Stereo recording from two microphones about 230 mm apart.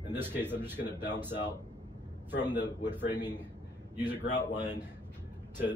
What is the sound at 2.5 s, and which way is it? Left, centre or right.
Speech, left.